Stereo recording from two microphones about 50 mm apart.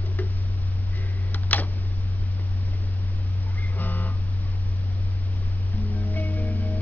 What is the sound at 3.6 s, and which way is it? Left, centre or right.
Music, left.